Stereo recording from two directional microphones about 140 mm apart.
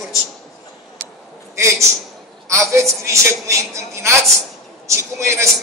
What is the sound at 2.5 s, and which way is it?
A woman's voice, 20° right (ahead or behind).